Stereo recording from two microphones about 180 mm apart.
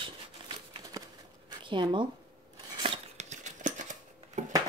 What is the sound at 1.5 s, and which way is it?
Zipper, 25° right (ahead or behind).